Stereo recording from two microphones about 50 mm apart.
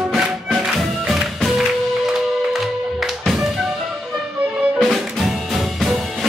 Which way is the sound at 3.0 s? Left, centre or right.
Centre.